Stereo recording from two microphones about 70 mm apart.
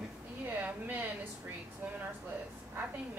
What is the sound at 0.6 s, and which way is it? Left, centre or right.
Speech, right.